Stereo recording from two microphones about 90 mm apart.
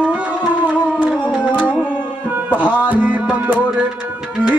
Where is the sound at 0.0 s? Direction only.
15° right (ahead or behind).